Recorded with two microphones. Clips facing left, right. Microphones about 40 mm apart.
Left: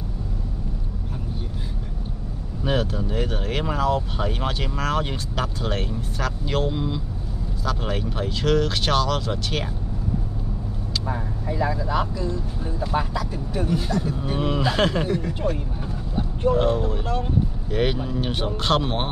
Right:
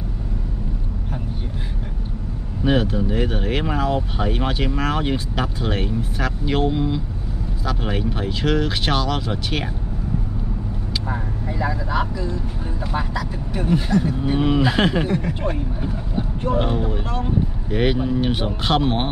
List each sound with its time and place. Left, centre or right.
2.6 s speech: centre
11.1 s vehicle: centre
13.5 s speech: right; by 19.0 s centre